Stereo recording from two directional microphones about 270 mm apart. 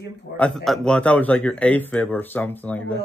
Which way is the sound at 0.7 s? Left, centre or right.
Centre.